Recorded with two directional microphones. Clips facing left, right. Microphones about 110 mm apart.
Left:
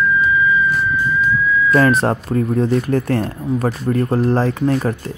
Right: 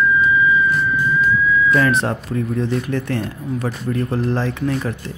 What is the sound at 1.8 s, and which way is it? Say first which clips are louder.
Speech: left 3 dB; 40° left (ahead or behind).